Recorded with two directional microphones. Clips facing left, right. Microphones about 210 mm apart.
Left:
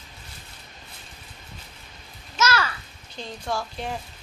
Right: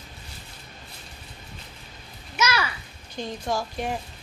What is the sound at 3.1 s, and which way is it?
Speech, 15° right (ahead or behind).